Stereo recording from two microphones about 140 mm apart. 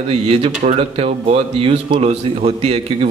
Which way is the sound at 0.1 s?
45° right (ahead or behind).